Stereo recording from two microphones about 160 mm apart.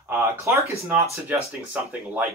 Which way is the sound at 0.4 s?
20° right (ahead or behind).